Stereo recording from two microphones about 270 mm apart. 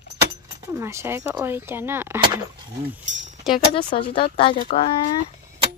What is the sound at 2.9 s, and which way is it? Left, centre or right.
Chink, centre.